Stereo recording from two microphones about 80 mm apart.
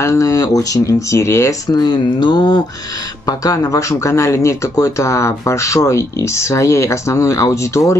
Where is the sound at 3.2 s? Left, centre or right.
Left.